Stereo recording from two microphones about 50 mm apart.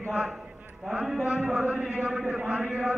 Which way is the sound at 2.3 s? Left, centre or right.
Right.